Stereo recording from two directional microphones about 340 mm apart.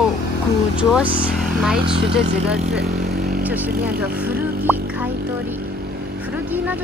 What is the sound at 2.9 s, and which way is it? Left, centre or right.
Vehicle, right.